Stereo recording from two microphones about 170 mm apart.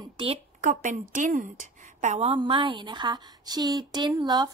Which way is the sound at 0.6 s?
50° right (ahead or behind).